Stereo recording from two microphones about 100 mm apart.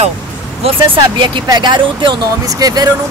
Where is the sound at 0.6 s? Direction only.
60° right (ahead or behind).